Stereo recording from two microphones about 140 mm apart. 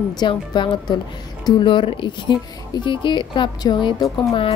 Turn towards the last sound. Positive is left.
turn(degrees=35)  # may be behind; listen again after turning